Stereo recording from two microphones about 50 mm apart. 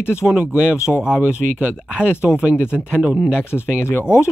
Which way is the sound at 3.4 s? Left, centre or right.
Left.